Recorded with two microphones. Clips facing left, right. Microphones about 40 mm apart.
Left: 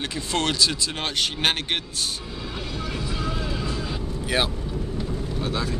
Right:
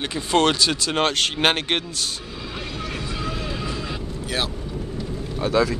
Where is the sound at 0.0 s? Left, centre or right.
Right.